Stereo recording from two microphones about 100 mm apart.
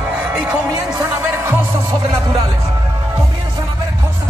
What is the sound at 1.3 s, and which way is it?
Music, 25° right (ahead or behind).